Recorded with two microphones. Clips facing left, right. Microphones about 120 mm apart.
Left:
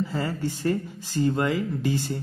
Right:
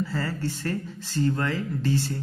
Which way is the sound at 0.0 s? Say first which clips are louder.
Left 1 dB; 20° left (ahead or behind).